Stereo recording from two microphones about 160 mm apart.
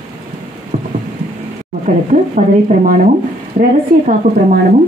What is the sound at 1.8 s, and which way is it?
A woman's voice, 50° right (ahead or behind).